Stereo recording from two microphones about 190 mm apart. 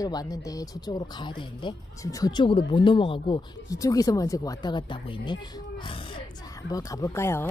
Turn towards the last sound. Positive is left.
turn(degrees=15)  # may be behind; listen again after turning